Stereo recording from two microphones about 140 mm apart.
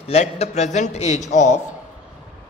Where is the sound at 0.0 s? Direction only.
50° left (ahead or behind).